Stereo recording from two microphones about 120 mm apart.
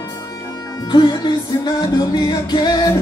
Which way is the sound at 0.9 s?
35° left (ahead or behind).